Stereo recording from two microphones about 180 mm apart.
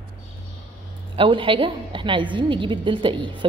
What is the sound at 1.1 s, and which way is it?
A woman's voice, 30° right (ahead or behind).